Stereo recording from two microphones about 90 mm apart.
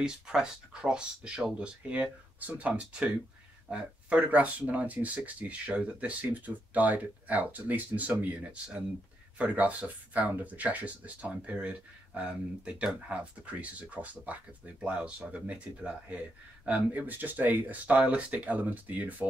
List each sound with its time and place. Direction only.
0.0 s speech: 10° right (ahead or behind)